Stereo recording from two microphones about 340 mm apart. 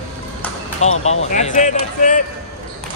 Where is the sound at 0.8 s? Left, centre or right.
Centre.